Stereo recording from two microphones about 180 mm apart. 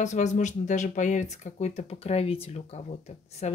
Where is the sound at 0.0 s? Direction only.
40° left (ahead or behind).